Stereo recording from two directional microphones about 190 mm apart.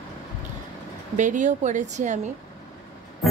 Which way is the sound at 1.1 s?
40° right (ahead or behind).